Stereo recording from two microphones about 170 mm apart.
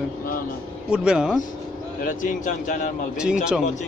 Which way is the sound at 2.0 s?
50° left (ahead or behind).